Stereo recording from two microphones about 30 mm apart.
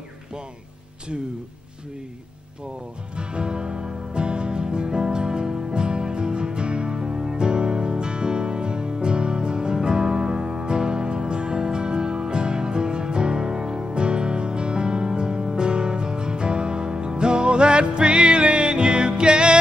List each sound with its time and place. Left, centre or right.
3.2 s music: right